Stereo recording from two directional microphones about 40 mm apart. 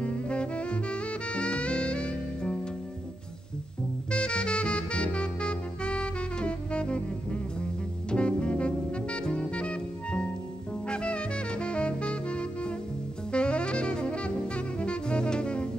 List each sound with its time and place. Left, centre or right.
0.0 s music: left
4.1 s music: left
10.9 s saxophone: left